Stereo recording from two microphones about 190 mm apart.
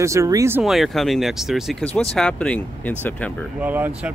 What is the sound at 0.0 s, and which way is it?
Speech, 15° right (ahead or behind).